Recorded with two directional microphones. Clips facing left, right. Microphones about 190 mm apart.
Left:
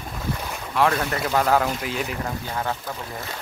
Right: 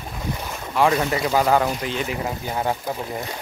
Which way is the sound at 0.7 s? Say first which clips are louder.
Right 2 dB; 5° right (ahead or behind).